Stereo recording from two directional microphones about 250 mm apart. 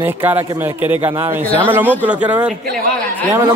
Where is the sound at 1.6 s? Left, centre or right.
Centre.